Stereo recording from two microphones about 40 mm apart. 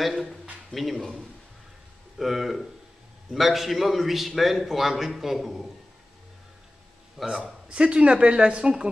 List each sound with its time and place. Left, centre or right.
0.7 s a man's voice: centre
2.1 s a man's voice: centre
7.2 s speech: centre